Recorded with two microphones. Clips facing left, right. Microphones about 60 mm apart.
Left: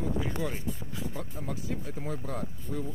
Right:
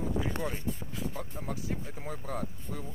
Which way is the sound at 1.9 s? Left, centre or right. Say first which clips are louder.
Left 2 dB; centre.